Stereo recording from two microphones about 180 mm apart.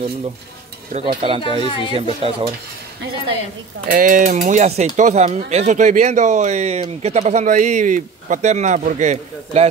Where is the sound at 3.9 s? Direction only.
50° right (ahead or behind).